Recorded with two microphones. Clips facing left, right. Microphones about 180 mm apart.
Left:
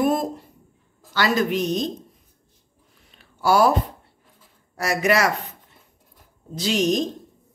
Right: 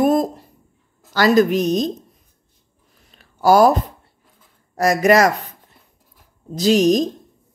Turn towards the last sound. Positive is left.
turn(degrees=-40)  # may be behind; listen again after turning